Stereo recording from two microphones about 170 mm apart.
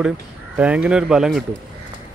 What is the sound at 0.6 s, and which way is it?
Speech, 5° right (ahead or behind).